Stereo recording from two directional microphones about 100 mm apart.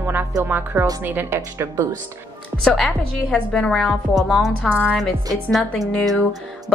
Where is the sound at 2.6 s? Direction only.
5° left (ahead or behind).